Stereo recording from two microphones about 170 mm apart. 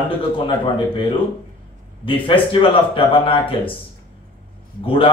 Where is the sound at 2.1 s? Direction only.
30° left (ahead or behind).